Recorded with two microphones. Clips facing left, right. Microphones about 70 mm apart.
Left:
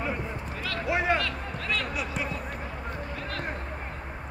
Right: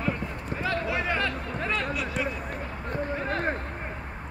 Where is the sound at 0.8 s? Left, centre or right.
Centre.